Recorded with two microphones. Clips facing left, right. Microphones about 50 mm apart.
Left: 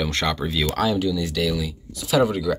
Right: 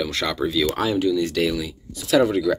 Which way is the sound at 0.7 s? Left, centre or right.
Centre.